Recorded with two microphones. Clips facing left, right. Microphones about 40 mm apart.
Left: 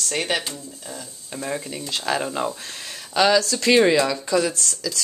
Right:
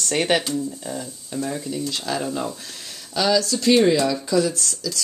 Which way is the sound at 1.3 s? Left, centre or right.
Left.